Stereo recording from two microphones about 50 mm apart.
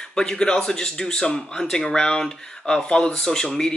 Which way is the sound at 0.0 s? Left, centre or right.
Centre.